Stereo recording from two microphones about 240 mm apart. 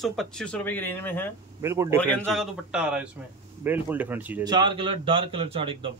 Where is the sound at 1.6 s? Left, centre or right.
Centre.